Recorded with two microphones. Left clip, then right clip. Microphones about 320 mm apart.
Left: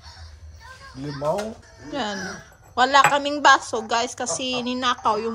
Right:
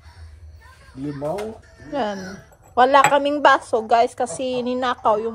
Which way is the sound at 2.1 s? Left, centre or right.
Centre.